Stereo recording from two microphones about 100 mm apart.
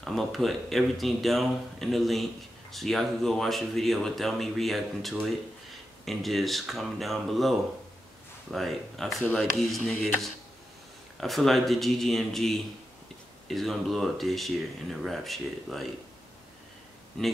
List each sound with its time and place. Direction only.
0.0 s speech: centre (ahead or behind)
9.2 s speech: 15° left (ahead or behind)
9.6 s speech: centre (ahead or behind)
11.1 s speech: centre (ahead or behind)
17.1 s speech: 5° left (ahead or behind)